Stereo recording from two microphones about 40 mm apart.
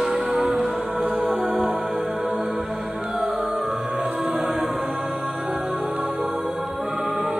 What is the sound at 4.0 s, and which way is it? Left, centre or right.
Music, right.